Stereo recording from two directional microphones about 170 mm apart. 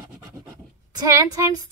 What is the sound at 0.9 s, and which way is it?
Speech, 20° right (ahead or behind).